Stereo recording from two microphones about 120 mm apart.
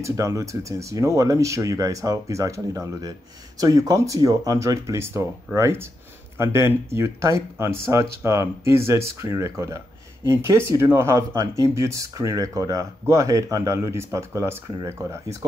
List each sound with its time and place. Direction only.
0.0 s speech: 25° right (ahead or behind)